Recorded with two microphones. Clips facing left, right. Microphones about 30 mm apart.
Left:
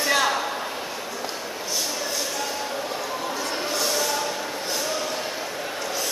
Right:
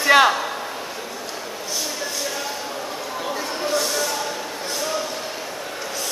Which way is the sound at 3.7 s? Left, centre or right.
Centre.